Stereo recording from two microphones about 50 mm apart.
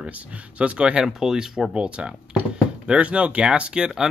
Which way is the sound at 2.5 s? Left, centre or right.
Centre.